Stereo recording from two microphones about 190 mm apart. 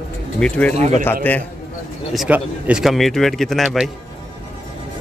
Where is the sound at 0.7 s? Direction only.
35° right (ahead or behind).